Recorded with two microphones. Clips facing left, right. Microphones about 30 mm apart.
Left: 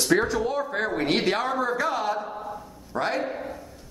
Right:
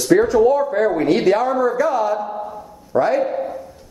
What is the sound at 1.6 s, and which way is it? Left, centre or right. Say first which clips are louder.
Speech: right 8 dB; centre.